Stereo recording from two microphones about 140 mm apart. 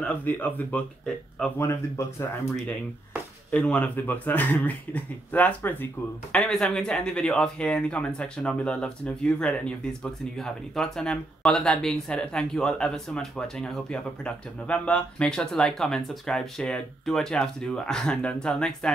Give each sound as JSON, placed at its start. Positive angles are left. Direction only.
{"t": 0.0, "sound": "speech", "side_deg": 10}
{"t": 1.6, "sound": "speech", "side_deg": 20}
{"t": 3.5, "sound": "speech", "side_deg": 10}